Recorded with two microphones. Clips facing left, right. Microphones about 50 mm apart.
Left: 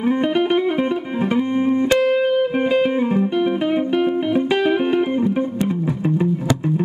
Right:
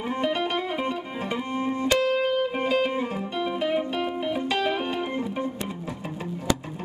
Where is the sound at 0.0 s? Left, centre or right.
Centre.